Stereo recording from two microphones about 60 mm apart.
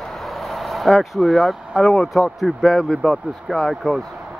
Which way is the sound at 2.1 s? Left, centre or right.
Centre.